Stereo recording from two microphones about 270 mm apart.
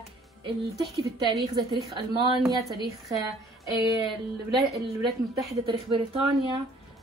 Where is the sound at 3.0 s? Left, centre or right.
Centre.